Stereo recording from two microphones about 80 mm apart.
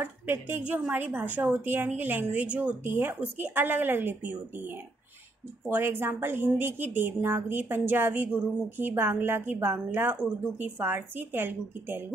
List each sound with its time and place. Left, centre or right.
0.0 s a woman's voice: right
2.8 s a woman's voice: right